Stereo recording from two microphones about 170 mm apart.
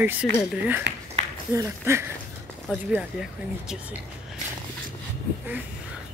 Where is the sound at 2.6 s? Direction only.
5° right (ahead or behind).